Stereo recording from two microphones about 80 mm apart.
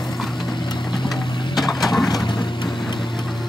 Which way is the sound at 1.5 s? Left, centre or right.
Left.